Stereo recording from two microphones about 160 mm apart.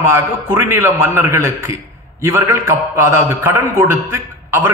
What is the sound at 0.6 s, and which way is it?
A man's voice, 15° right (ahead or behind).